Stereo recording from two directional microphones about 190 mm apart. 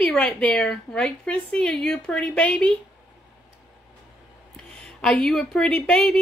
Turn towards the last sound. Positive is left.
turn(degrees=5)  # may be behind; listen again after turning